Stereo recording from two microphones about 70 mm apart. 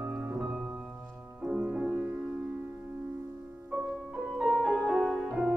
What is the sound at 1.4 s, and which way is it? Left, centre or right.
Music, centre.